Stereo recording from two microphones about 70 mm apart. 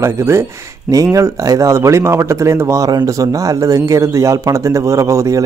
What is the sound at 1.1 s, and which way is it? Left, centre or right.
Speech, right.